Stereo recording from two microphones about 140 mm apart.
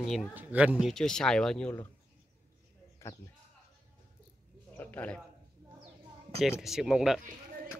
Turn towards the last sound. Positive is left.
turn(degrees=-5)  # may be behind; listen again after turning